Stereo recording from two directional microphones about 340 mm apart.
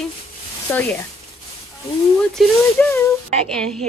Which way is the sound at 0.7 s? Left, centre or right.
Centre.